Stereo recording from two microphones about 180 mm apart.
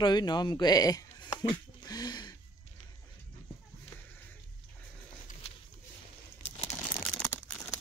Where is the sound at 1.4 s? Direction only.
20° left (ahead or behind).